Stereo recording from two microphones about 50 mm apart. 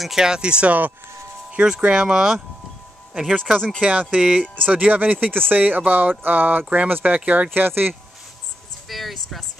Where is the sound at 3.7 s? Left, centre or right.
Right.